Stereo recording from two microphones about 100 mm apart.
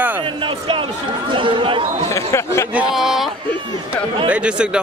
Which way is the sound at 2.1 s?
30° left (ahead or behind).